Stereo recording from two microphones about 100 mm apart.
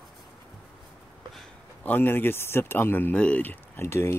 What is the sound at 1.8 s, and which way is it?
Speech, 20° left (ahead or behind).